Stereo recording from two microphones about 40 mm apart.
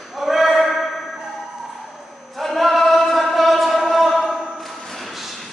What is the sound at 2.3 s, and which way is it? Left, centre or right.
Chant, centre.